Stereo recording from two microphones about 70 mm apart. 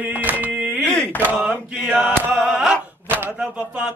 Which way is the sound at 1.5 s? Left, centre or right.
Right.